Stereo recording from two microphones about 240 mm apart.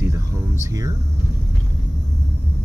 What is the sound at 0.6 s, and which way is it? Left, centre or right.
Speech, centre.